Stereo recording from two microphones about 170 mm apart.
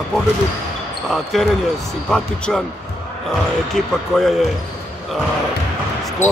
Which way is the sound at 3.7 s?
Centre (ahead or behind).